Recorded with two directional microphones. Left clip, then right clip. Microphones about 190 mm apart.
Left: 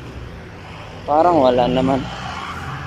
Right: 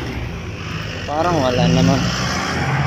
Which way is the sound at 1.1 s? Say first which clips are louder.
Left 5 dB; 15° left (ahead or behind).